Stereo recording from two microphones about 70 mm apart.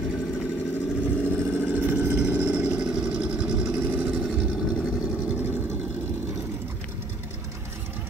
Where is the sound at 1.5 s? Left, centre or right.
Right.